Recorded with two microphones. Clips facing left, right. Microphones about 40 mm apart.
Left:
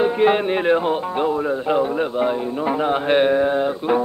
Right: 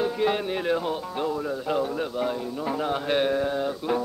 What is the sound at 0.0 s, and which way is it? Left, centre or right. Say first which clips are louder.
Music: left 8 dB; left.